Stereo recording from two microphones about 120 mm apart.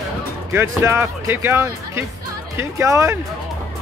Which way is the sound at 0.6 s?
20° right (ahead or behind).